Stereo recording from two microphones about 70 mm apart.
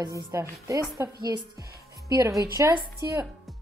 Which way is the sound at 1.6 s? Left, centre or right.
Right.